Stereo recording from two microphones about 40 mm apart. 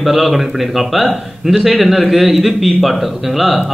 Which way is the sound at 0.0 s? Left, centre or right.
Centre.